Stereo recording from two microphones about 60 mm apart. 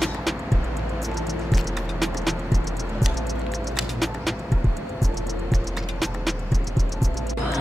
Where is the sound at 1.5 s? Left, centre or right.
Centre.